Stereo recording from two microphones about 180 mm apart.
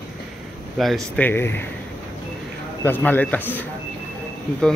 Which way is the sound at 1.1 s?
10° left (ahead or behind).